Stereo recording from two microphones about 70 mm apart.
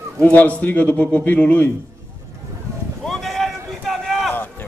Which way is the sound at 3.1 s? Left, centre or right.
Centre.